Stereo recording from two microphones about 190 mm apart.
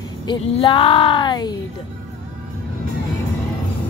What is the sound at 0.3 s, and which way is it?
A woman's voice, 25° left (ahead or behind).